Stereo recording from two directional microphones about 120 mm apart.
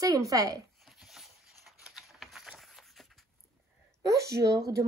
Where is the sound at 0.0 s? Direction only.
30° right (ahead or behind).